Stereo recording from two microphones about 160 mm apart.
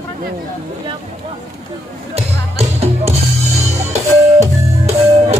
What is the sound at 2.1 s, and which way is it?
Music, 40° right (ahead or behind).